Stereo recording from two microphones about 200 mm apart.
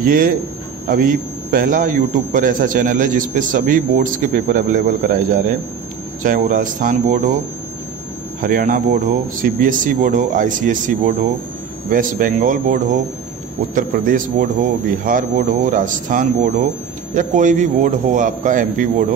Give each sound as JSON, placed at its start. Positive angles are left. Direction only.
{"t": 0.0, "sound": "a man's voice", "side_deg": -45}
{"t": 8.4, "sound": "a man's voice", "side_deg": -45}